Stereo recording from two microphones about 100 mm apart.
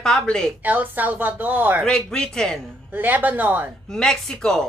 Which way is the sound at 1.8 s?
5° left (ahead or behind).